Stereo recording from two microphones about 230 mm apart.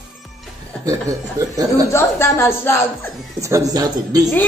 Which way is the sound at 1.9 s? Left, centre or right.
Centre.